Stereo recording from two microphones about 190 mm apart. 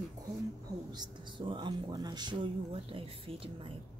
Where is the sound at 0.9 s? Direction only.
25° right (ahead or behind).